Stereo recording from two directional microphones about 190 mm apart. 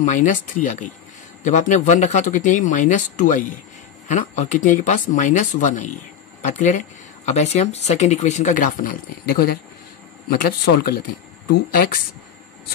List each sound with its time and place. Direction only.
0.0 s speech: 40° left (ahead or behind)